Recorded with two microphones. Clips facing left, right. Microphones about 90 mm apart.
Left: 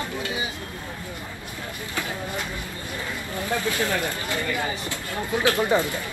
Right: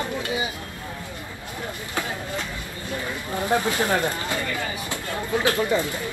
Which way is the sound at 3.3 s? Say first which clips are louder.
Right 4 dB; 20° right (ahead or behind).